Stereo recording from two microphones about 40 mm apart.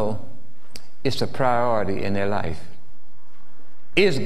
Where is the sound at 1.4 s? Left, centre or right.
Left.